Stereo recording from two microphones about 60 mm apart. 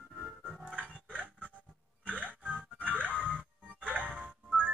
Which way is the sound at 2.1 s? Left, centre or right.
Right.